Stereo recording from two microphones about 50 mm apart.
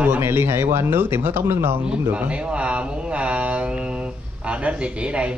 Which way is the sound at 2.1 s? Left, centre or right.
Right.